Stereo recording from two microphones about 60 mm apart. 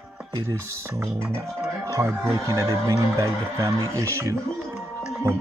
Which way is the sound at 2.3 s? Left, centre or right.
Right.